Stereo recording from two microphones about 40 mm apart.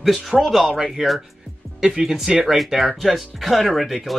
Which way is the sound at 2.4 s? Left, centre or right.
Centre.